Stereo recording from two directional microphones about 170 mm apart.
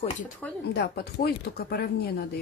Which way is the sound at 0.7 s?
70° left (ahead or behind).